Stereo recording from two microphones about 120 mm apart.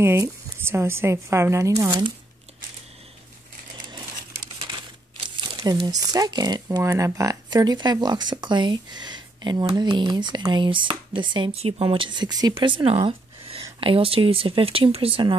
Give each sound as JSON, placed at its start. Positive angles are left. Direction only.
{"t": 0.0, "sound": "speech", "side_deg": -20}
{"t": 4.6, "sound": "typewriter", "side_deg": -40}
{"t": 5.6, "sound": "speech", "side_deg": -30}